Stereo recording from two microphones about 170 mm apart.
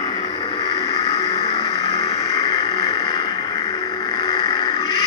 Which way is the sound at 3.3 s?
30° left (ahead or behind).